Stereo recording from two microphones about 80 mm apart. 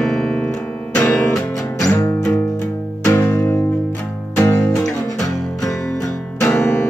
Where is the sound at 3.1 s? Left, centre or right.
Left.